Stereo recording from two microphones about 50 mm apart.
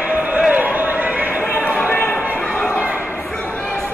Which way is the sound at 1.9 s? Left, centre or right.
Left.